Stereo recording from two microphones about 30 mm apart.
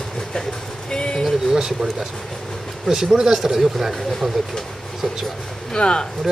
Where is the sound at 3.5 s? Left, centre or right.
Centre.